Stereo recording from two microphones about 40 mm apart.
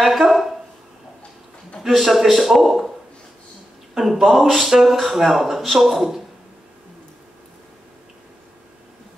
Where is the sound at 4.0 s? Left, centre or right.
Centre.